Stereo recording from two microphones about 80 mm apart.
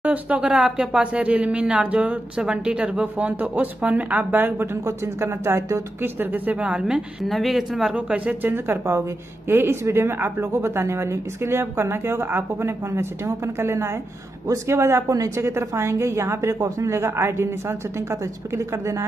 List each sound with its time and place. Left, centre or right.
0.0 s speech: centre
4.8 s speech: right; by 7.0 s centre
7.2 s speech: centre
7.9 s a woman's voice: centre; by 19.0 s right